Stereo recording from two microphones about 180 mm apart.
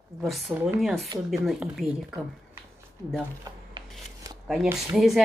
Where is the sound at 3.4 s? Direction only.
20° right (ahead or behind).